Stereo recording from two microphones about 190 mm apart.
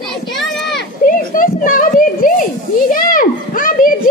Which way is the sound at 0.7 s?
45° left (ahead or behind).